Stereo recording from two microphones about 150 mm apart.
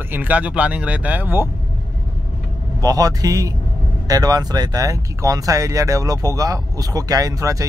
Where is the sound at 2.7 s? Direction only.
25° right (ahead or behind).